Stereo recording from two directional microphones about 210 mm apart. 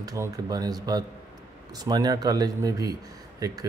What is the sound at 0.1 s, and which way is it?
Speech, 15° right (ahead or behind).